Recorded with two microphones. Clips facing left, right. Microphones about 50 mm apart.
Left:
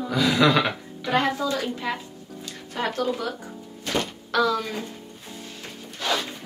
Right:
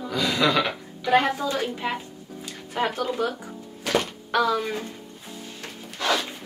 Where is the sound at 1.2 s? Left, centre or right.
Right.